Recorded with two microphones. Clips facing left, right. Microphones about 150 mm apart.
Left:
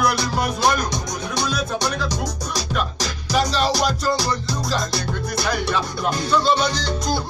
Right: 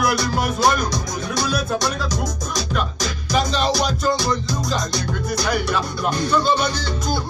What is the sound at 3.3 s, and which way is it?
Music, centre (ahead or behind).